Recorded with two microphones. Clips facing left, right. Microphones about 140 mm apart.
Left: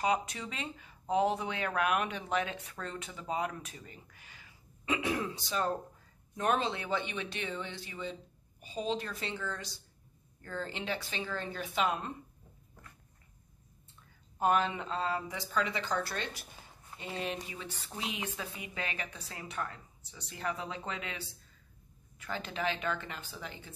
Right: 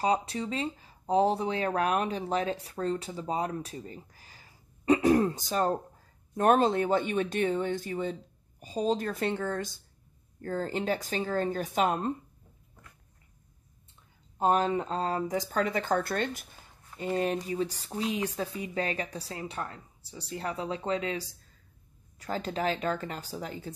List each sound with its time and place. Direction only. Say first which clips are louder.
0.0 s speech: right 4 dB; 30° right (ahead or behind)
14.4 s speech: right 4 dB; 35° right (ahead or behind)